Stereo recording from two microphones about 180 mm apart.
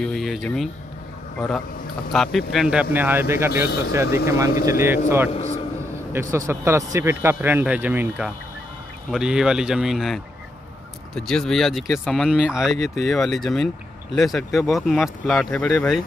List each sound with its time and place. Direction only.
0.0 s speech: centre (ahead or behind)
2.1 s a man's voice: centre (ahead or behind)
5.3 s a sound: 35° left (ahead or behind)
6.3 s a man's voice: 15° right (ahead or behind); by 16.0 s 5° left (ahead or behind)